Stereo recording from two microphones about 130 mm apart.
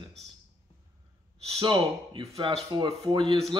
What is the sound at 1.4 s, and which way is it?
Speech, 45° right (ahead or behind).